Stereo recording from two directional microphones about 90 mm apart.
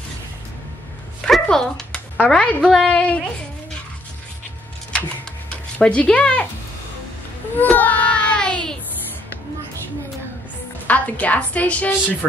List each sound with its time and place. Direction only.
1.2 s a sound: 5° left (ahead or behind)
2.7 s a woman's voice: 5° left (ahead or behind)
5.8 s a woman's voice: 10° left (ahead or behind)
7.7 s child singing: 20° left (ahead or behind)
10.9 s a woman's voice: 15° left (ahead or behind)